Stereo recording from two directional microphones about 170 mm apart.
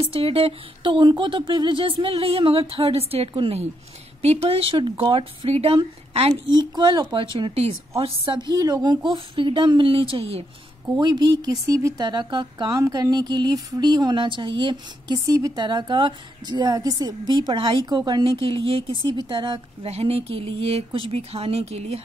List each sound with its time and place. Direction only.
0.0 s speech: 35° right (ahead or behind)